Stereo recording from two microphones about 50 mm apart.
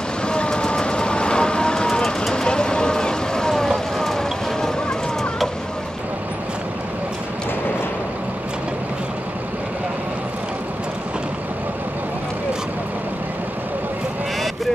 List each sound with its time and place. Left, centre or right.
0.3 s vehicle: centre